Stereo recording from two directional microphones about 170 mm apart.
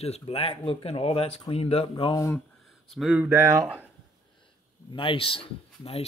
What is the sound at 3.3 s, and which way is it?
Speech, 15° right (ahead or behind).